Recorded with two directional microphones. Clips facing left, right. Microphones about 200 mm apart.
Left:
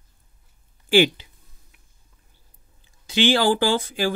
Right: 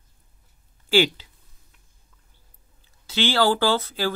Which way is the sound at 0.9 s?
15° left (ahead or behind).